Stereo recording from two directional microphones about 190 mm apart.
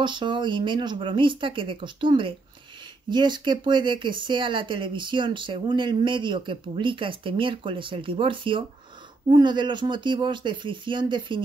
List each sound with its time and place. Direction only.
0.0 s speech: 25° right (ahead or behind)